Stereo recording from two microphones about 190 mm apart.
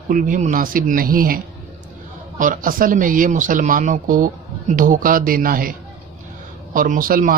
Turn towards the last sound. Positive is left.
turn(degrees=-45)  # may be behind; listen again after turning